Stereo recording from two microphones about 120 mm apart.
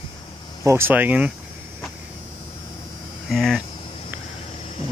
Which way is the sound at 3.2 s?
Centre (ahead or behind).